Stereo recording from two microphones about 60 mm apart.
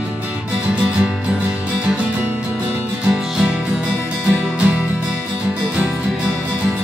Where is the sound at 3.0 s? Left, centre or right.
Centre.